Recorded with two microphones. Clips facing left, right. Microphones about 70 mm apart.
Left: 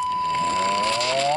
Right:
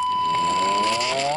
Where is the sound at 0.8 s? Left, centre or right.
Centre.